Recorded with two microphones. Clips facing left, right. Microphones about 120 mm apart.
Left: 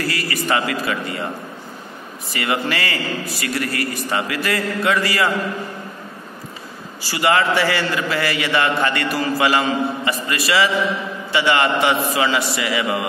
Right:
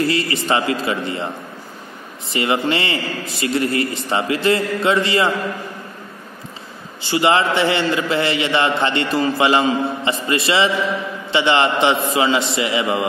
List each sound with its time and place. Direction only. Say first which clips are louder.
0.0 s a man's voice: right 4 dB; 25° right (ahead or behind)
7.0 s a man's voice: right 2 dB; 25° right (ahead or behind)